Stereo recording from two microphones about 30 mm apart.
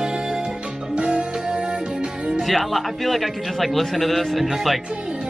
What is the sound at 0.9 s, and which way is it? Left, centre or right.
Music, right.